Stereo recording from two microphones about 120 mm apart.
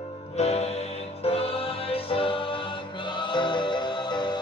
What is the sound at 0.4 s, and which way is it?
Music, 60° left (ahead or behind).